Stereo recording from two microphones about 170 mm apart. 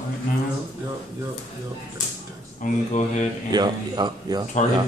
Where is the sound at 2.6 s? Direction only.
45° left (ahead or behind).